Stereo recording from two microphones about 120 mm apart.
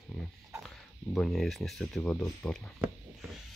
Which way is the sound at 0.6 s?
Centre (ahead or behind).